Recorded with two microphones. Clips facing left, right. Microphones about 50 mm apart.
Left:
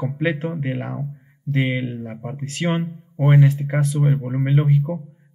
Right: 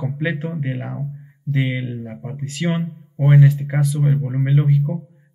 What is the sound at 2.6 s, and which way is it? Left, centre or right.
Speech, centre.